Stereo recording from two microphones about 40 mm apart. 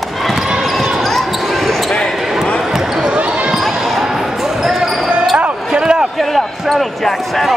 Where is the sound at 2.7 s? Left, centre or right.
Centre.